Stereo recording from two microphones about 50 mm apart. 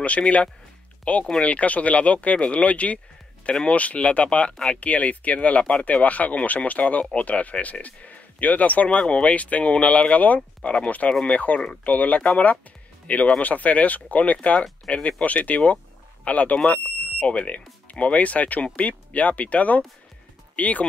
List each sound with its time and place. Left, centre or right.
0.0 s speech: left